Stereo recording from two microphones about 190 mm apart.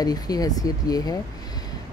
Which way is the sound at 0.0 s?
20° left (ahead or behind).